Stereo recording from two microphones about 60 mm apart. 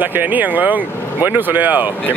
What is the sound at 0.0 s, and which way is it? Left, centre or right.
Speech, right.